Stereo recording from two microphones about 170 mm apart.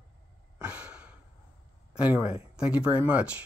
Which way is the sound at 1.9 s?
10° right (ahead or behind).